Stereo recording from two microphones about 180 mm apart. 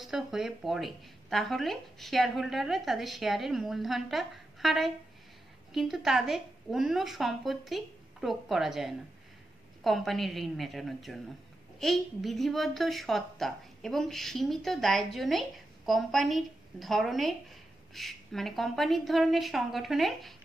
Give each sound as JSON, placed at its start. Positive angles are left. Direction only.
{"t": 0.0, "sound": "a woman's voice", "side_deg": 0}